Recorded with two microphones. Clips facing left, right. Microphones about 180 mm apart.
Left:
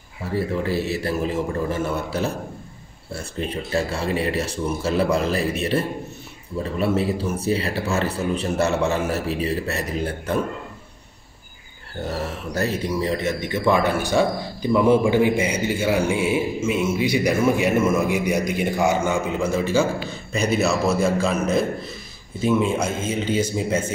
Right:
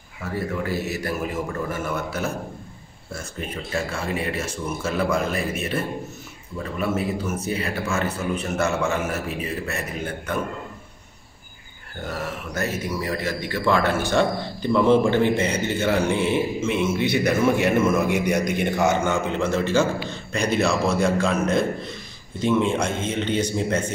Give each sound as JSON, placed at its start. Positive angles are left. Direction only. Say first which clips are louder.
{"t": 0.2, "sound": "a man's voice", "louder": "left 3 dB", "side_deg": 30}
{"t": 12.1, "sound": "speech", "louder": "left 2 dB", "side_deg": 35}